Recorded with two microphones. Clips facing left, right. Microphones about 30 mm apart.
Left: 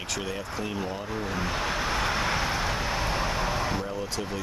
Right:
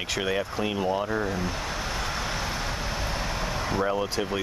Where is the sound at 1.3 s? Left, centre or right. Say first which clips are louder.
Left 2 dB; centre.